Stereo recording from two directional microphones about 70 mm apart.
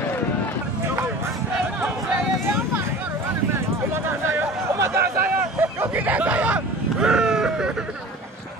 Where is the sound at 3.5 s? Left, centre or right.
Right; by 7.8 s centre.